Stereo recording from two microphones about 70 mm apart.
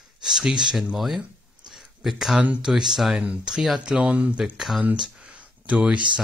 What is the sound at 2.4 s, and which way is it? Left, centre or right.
Speech, centre.